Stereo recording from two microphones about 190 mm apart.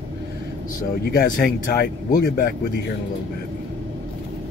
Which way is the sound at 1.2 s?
50° left (ahead or behind).